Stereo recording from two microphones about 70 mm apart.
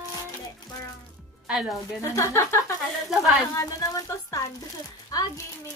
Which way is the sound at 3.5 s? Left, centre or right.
Left.